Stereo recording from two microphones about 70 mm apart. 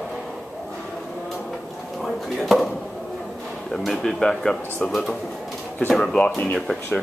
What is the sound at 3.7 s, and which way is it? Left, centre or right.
A man's voice, centre.